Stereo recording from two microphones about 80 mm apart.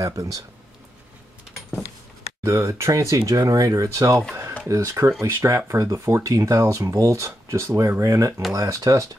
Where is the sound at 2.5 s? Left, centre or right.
Right.